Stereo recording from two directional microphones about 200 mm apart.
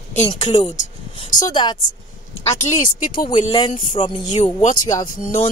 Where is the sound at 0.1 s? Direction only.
35° left (ahead or behind).